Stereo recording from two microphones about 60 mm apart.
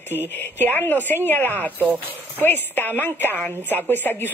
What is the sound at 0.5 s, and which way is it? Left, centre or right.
Speech, left.